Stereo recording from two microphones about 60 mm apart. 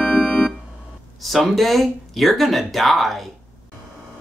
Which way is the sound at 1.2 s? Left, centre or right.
Centre.